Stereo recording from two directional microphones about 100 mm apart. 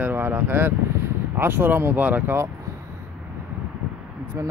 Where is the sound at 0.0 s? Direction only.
20° right (ahead or behind).